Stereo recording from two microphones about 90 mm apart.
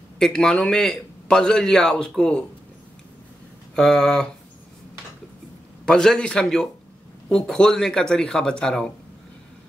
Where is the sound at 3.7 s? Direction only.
5° left (ahead or behind).